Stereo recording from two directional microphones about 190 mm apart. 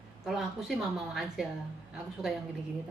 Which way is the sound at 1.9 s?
5° right (ahead or behind).